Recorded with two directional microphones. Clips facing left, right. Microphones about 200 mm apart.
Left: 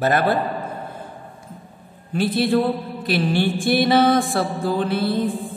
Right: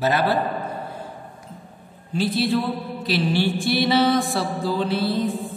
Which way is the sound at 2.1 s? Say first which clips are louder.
Left 3 dB; 55° left (ahead or behind).